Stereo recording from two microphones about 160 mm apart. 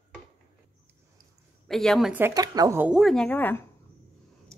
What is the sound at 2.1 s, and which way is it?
Speech, 20° right (ahead or behind).